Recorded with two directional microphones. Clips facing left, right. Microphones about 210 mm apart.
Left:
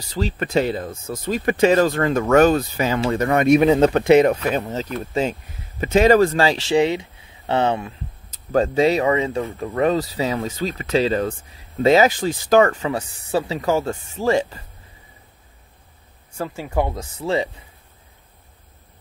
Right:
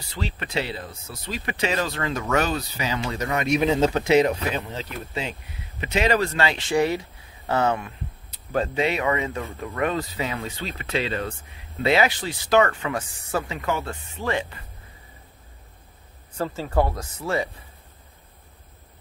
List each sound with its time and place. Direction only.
0.1 s speech: 45° left (ahead or behind)
6.7 s speech: 20° left (ahead or behind)
8.5 s speech: 40° left (ahead or behind)
12.6 s speech: 30° left (ahead or behind)
16.3 s speech: 10° left (ahead or behind)